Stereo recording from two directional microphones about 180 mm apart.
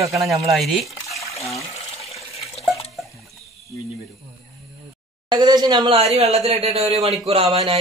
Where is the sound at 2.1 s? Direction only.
35° left (ahead or behind).